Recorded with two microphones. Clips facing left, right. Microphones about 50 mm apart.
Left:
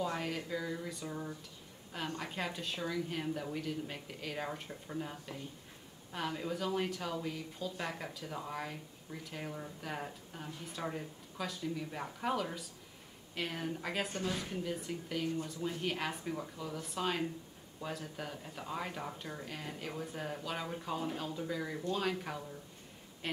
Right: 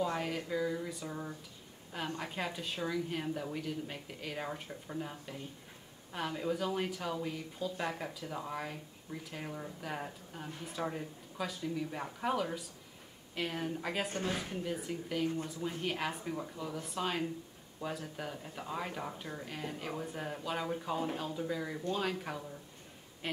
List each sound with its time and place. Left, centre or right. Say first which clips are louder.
0.0 s speech: right 2 dB; centre
14.1 s a woman's voice: right 1 dB; right
14.4 s a woman's voice: right 1 dB; centre
23.2 s a sound: even; centre